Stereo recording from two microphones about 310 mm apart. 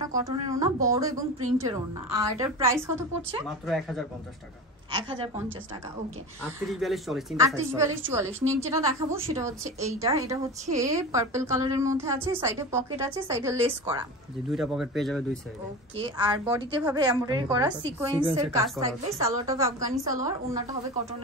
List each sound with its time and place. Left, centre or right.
0.0 s a woman's voice: centre
2.4 s a woman's voice: centre
3.4 s speech: centre
4.9 s a woman's voice: centre
6.6 s a woman's voice: centre
14.5 s speech: centre
16.0 s a woman's voice: centre